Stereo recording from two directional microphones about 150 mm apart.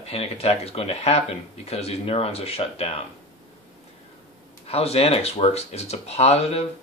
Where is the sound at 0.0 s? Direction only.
40° left (ahead or behind).